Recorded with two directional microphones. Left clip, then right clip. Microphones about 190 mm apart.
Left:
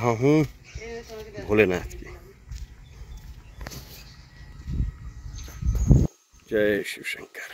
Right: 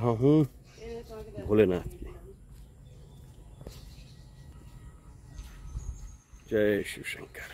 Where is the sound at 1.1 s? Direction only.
45° left (ahead or behind).